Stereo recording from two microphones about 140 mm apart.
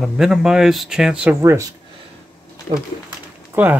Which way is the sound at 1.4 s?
20° right (ahead or behind).